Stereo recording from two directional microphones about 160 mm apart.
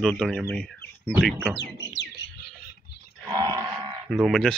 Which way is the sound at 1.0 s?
5° right (ahead or behind).